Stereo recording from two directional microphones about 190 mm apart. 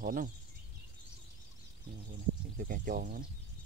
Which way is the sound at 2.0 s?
45° right (ahead or behind).